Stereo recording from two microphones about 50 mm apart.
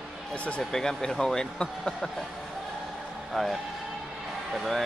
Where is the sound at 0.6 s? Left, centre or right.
Centre.